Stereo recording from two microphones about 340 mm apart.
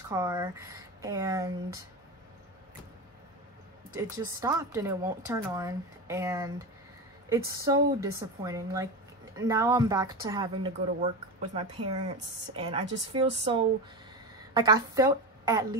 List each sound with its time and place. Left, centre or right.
0.1 s speech: centre
3.9 s speech: centre
12.5 s a woman's voice: centre